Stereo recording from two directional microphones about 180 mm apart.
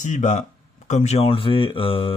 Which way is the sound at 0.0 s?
40° left (ahead or behind).